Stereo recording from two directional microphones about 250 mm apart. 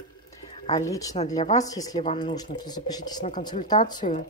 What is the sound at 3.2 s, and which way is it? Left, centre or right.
A woman's voice, left.